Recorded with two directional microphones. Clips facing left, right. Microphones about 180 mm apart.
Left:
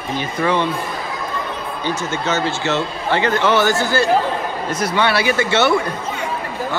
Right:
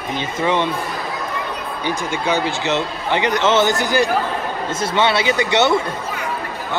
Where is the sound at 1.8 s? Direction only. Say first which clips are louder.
Right 1 dB; 15° right (ahead or behind).